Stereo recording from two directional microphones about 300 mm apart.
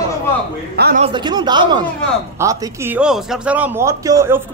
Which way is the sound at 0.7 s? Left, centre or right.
Right.